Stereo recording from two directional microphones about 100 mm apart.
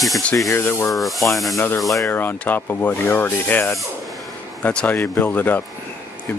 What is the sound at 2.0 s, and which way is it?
Speech, 20° left (ahead or behind).